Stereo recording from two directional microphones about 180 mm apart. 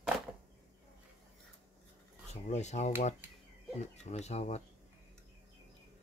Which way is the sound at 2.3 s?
40° left (ahead or behind).